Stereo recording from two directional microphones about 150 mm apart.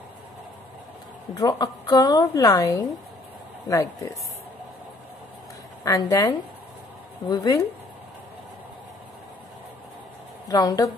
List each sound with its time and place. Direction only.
1.3 s speech: 25° left (ahead or behind)
5.9 s speech: 20° left (ahead or behind)
10.5 s speech: 25° left (ahead or behind)